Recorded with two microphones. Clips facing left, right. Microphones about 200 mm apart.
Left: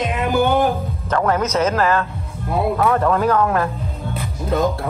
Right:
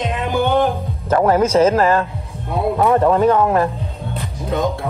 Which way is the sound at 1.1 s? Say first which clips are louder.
Right 5 dB; 30° right (ahead or behind).